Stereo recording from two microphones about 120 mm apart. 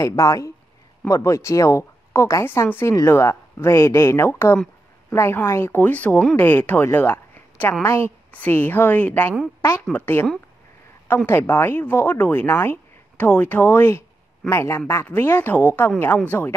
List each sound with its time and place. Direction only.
0.0 s speech: 25° left (ahead or behind)
11.2 s speech: 20° left (ahead or behind)